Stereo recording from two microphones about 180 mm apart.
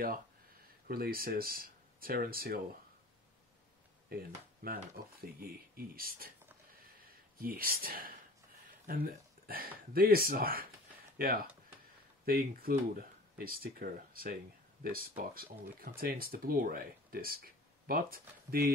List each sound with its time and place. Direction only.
0.8 s speech: 55° right (ahead or behind)
4.6 s speech: 55° right (ahead or behind)
7.3 s speech: 55° right (ahead or behind)